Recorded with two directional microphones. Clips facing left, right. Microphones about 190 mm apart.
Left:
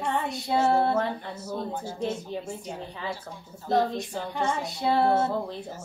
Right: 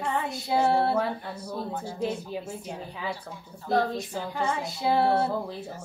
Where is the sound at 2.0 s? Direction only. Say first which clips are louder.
Even; 5° right (ahead or behind).